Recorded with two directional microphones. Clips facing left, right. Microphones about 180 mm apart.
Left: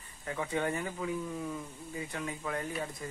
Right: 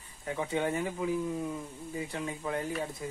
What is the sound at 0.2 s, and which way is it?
Speech, 20° right (ahead or behind).